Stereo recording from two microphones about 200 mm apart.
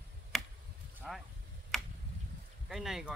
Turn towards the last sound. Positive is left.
turn(degrees=0)  # may be behind; listen again after turning